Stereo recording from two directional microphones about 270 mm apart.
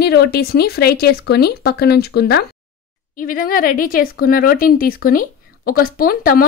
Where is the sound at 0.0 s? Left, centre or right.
Left.